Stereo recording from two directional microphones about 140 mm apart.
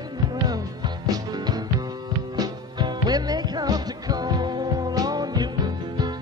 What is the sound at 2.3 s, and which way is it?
Music, 30° right (ahead or behind).